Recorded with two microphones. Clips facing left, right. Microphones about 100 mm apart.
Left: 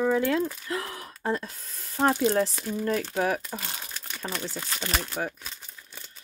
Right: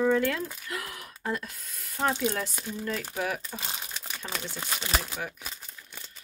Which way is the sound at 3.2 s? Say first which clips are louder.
Left 5 dB; 40° left (ahead or behind).